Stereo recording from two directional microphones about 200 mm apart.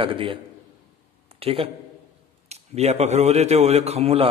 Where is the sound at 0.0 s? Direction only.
25° right (ahead or behind).